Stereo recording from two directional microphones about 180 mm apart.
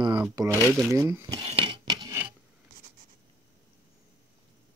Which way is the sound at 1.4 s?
30° right (ahead or behind).